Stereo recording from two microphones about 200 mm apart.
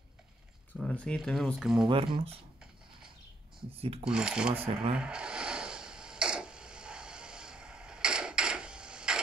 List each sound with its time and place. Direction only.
0.7 s speech: 5° left (ahead or behind)
1.9 s speech: 25° right (ahead or behind)
3.7 s speech: 30° right (ahead or behind)
4.0 s speech: 5° right (ahead or behind)
4.9 s a sound: 5° right (ahead or behind)